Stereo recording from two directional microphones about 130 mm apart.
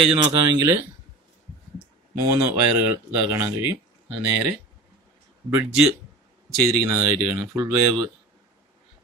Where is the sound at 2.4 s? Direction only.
20° right (ahead or behind).